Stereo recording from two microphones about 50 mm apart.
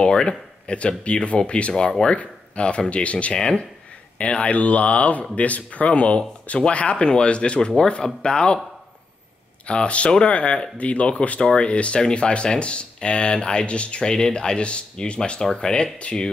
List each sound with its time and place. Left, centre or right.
0.0 s speech: centre
9.7 s speech: left